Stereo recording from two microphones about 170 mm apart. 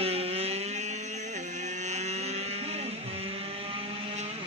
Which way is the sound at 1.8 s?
40° right (ahead or behind).